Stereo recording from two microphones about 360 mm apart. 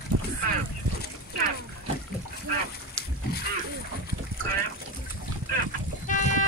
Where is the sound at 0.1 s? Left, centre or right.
Right.